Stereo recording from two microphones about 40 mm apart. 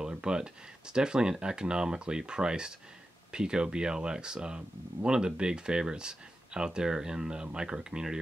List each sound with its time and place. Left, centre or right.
0.2 s speech: right